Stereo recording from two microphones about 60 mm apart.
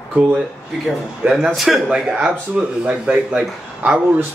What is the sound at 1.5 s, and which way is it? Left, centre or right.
Speech, centre.